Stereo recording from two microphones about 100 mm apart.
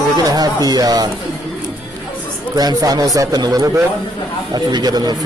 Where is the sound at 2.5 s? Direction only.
40° right (ahead or behind).